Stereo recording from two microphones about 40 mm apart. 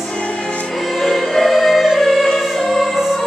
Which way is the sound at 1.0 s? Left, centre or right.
Centre.